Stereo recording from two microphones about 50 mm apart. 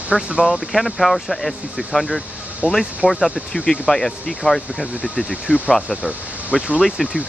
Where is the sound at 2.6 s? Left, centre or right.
Right.